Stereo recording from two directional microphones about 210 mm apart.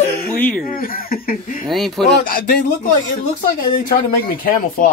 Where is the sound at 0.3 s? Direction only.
10° left (ahead or behind).